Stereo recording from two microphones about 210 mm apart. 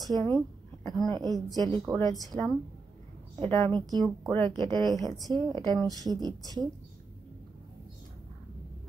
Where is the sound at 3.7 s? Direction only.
20° right (ahead or behind).